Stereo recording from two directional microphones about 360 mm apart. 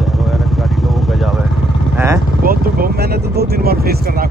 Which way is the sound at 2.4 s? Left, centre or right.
Right.